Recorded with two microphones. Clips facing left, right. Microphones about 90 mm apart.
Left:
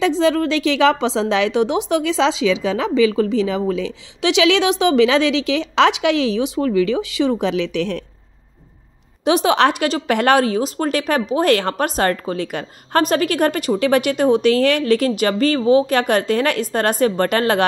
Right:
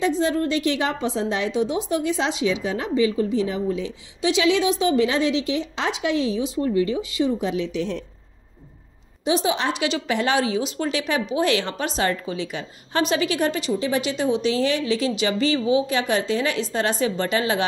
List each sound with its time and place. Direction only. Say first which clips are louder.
0.0 s a woman's voice: left 5 dB; 90° left; by 8.0 s 70° left (ahead or behind)
9.2 s a woman's voice: left 7 dB; 65° left (ahead or behind)